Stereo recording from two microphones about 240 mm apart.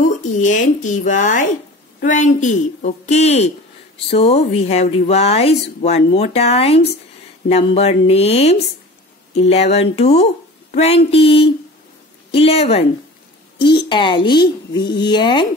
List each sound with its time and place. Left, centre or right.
0.4 s speech: left
13.8 s speech: centre